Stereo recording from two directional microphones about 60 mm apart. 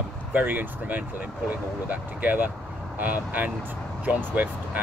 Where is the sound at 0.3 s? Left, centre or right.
Right.